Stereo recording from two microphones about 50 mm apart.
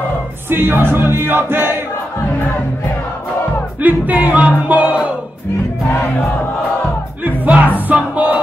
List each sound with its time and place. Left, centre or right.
0.5 s music: right
3.8 s music: right
7.2 s music: right